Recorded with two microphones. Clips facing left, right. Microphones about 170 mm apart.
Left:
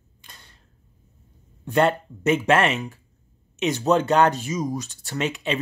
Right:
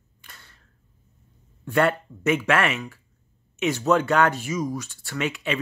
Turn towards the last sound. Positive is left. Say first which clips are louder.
# left 1 dB
turn(degrees=20)  # may be behind; listen again after turning